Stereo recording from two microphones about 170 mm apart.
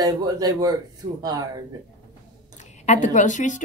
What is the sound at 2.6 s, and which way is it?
A woman's voice, 45° left (ahead or behind).